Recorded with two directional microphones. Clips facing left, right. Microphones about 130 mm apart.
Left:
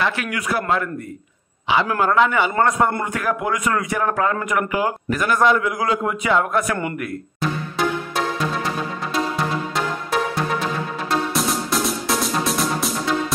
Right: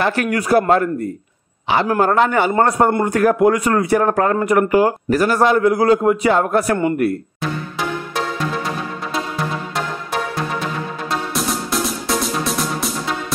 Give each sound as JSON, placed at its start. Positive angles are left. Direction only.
{"t": 0.0, "sound": "a man's voice", "side_deg": -40}
{"t": 11.1, "sound": "music", "side_deg": 0}